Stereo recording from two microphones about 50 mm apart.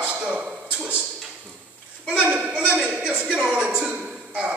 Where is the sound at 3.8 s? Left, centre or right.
Right.